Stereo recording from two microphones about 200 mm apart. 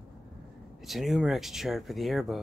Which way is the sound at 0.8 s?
Centre (ahead or behind).